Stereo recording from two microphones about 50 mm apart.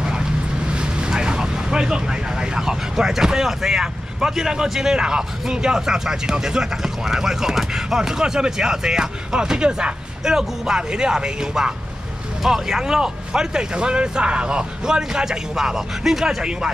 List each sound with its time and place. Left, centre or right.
0.0 s vehicle: centre
0.7 s speech: centre